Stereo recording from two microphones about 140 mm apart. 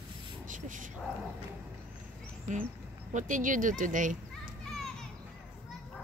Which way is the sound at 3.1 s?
65° right (ahead or behind).